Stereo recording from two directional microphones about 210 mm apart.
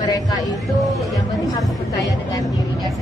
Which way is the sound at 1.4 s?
15° left (ahead or behind).